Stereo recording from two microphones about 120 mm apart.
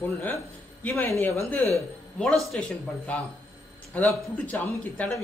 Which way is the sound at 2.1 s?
5° left (ahead or behind).